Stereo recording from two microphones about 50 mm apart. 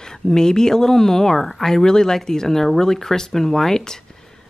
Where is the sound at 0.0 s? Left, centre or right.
Centre.